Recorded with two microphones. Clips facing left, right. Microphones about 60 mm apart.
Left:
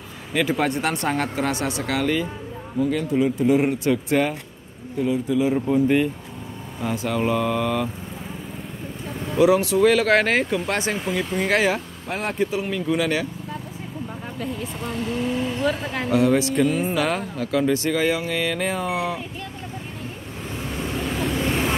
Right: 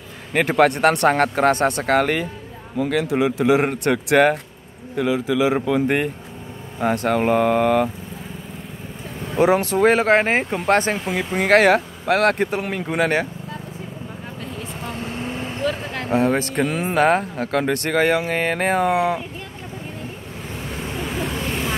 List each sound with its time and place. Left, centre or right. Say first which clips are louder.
0.3 s speech: right 5 dB; right
2.8 s speech: right 1 dB; right
3.6 s a man's voice: right 1 dB; right
4.9 s speech: right 2 dB; right
9.4 s speech: even; right
10.6 s speech: right 6 dB; right
14.9 s vehicle: left 4 dB; right
15.6 s a sound: left 1 dB; centre
16.1 s speech: even; right
17.0 s speech: right 6 dB; right
21.0 s waves: left 1 dB; centre